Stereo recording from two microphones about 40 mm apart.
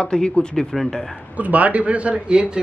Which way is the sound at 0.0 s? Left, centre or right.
Centre.